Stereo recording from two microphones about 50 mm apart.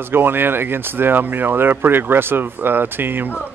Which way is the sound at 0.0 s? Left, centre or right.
Right.